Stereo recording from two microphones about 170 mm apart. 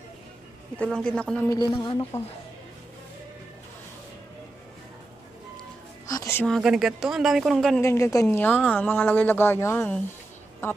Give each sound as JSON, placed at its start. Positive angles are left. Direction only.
{"t": 0.7, "sound": "speech", "side_deg": 5}
{"t": 1.5, "sound": "speech", "side_deg": 20}
{"t": 2.1, "sound": "speech", "side_deg": 40}
{"t": 6.0, "sound": "music", "side_deg": 20}
{"t": 6.4, "sound": "speech", "side_deg": 0}
{"t": 7.8, "sound": "speech", "side_deg": 15}